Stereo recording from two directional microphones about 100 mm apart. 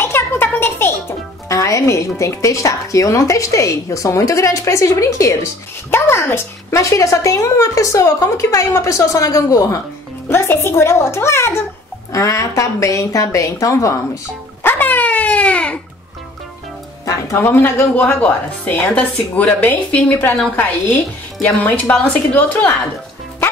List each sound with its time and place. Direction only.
0.0 s music: 25° left (ahead or behind)
1.5 s a woman's voice: 30° left (ahead or behind)
14.6 s dog: 20° left (ahead or behind)
17.0 s speech: 30° left (ahead or behind)